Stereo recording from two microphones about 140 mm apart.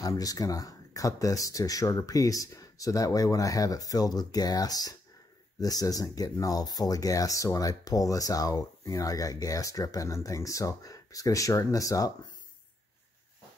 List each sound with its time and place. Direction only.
0.0 s speech: 25° left (ahead or behind)